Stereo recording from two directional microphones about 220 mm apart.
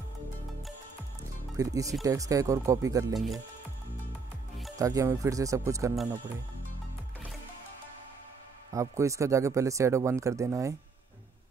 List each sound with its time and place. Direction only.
1.6 s speech: 15° right (ahead or behind)
4.7 s speech: 15° right (ahead or behind)
8.7 s speech: 15° right (ahead or behind)